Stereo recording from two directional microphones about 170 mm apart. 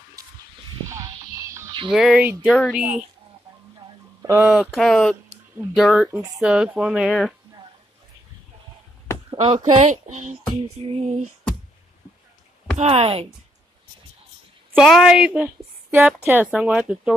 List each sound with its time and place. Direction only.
0.2 s honk: 20° right (ahead or behind)
1.3 s music: 20° right (ahead or behind)
1.9 s a woman's voice: centre (ahead or behind)
4.2 s a sound: 15° right (ahead or behind)
4.5 s a woman's voice: 5° right (ahead or behind)
6.1 s speech: 20° right (ahead or behind)
6.4 s a woman's voice: 5° right (ahead or behind)
9.3 s speech: 35° right (ahead or behind)
10.5 s a sound: 35° right (ahead or behind)
12.7 s a sound: 40° right (ahead or behind)
14.8 s a woman's voice: centre (ahead or behind)